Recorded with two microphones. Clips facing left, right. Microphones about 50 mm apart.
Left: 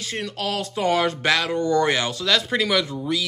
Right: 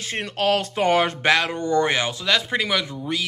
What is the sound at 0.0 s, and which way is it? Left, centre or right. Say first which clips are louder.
Speech: right 4 dB; right.